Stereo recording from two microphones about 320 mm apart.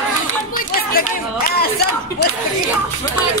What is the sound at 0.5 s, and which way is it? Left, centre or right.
Chatter, left.